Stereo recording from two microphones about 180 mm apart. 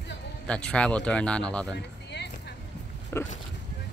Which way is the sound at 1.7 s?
75° left (ahead or behind).